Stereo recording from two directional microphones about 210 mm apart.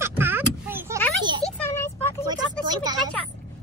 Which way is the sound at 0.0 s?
10° right (ahead or behind).